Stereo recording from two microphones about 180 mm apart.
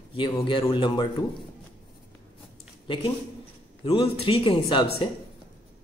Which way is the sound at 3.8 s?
30° left (ahead or behind).